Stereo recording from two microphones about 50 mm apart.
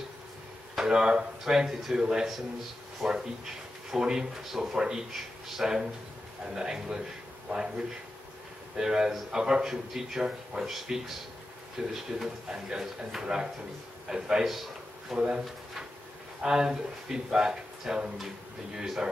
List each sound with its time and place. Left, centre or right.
0.7 s speech: centre
3.0 s speech: centre
3.9 s speech: centre
14.4 s a man's voice: centre
15.2 s speech: centre